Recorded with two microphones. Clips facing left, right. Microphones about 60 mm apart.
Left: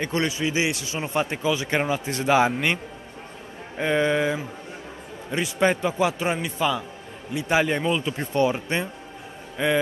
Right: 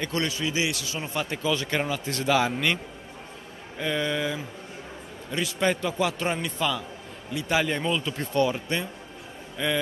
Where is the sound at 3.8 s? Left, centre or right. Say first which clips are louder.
Left 6 dB; left.